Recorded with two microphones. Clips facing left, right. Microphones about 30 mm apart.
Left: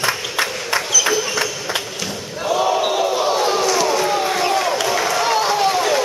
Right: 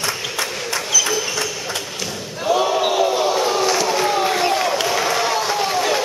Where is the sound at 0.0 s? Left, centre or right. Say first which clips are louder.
Left 3 dB; left.